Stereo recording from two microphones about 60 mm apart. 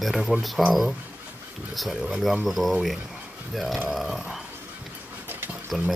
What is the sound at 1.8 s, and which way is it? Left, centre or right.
Speech, centre.